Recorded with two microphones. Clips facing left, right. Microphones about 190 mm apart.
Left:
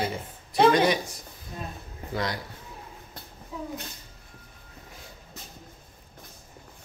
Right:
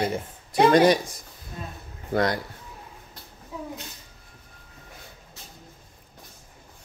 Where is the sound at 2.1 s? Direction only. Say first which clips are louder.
Right 7 dB; 55° right (ahead or behind).